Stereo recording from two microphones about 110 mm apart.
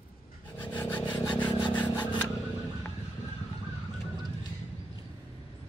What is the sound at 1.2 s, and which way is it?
Rub, 15° left (ahead or behind).